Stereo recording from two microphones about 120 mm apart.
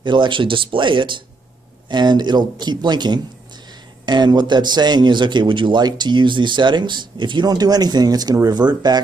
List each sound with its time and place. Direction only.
0.0 s a man's voice: 40° right (ahead or behind)